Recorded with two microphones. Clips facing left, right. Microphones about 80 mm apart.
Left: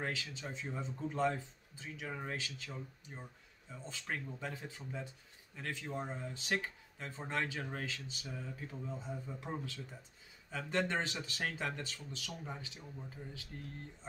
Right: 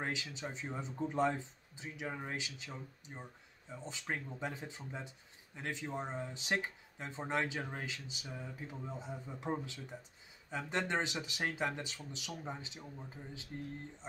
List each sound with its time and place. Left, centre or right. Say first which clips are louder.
0.0 s speech: right 1 dB; right